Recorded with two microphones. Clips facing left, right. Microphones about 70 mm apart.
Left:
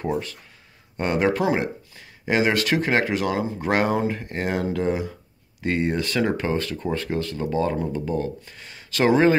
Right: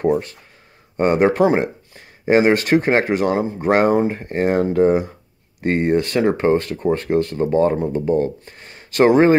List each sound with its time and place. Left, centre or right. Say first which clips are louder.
0.1 s speech: right 7 dB; right